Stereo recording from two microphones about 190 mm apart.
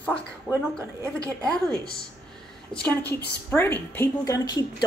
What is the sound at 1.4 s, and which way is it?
Speech, 5° left (ahead or behind).